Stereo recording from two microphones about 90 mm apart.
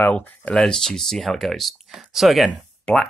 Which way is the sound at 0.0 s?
15° left (ahead or behind).